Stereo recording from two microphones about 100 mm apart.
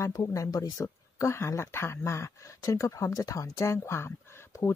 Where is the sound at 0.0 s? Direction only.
35° left (ahead or behind).